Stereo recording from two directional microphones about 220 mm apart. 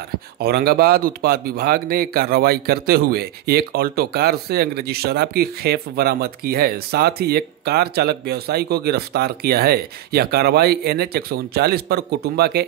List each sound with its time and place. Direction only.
0.4 s speech: 45° right (ahead or behind)